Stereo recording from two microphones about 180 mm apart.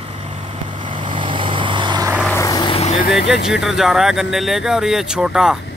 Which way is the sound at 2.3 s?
15° left (ahead or behind).